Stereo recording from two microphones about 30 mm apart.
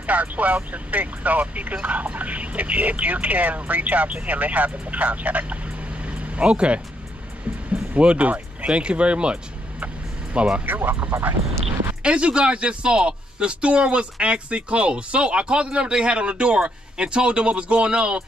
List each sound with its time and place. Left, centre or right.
0.0 s speech: right
6.0 s vehicle: right
8.2 s speech: right
10.6 s speech: right
12.0 s speech: right